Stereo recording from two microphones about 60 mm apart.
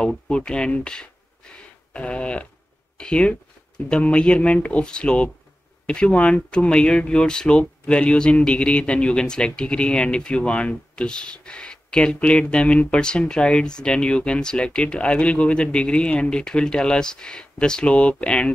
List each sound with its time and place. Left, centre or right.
0.3 s speech: centre